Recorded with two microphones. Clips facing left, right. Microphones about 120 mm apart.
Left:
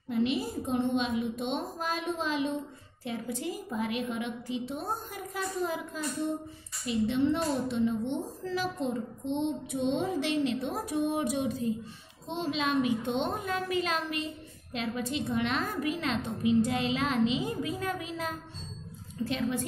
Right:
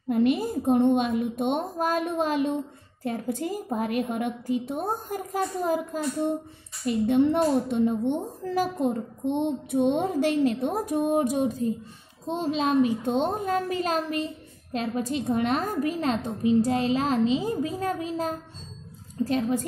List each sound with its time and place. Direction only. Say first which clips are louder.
0.1 s a woman's voice: right 6 dB; 50° right (ahead or behind)
6.9 s a woman's voice: right 5 dB; 55° right (ahead or behind)